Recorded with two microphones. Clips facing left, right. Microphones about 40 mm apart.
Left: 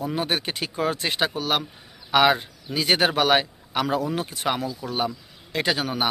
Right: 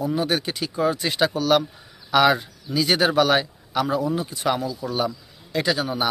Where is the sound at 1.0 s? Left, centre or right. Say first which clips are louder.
Right 4 dB; left.